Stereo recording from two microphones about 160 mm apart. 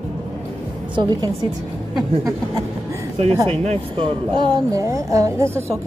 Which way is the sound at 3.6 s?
40° right (ahead or behind).